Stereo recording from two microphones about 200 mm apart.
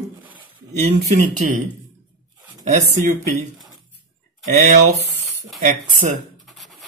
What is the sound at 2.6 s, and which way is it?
Speech, 40° right (ahead or behind).